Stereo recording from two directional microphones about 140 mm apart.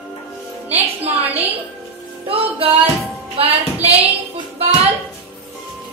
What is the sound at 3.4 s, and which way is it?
Child singing, 45° right (ahead or behind).